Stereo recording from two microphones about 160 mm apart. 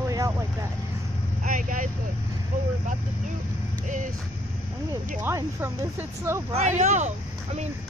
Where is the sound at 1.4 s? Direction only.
55° right (ahead or behind).